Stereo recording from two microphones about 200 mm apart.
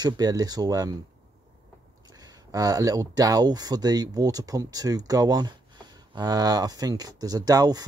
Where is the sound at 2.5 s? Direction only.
20° right (ahead or behind).